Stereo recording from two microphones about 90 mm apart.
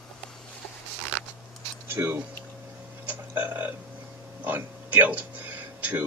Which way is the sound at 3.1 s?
20° right (ahead or behind).